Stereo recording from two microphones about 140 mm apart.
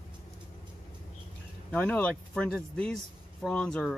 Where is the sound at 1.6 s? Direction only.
10° left (ahead or behind).